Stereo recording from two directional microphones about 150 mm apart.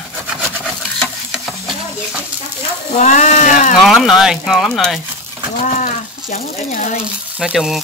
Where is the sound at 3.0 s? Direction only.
50° left (ahead or behind).